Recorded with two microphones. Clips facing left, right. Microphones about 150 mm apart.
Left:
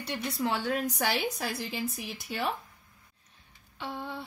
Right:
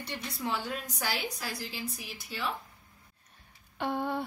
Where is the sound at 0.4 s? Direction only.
70° left (ahead or behind).